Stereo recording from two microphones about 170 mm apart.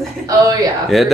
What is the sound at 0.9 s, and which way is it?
Speech, centre (ahead or behind).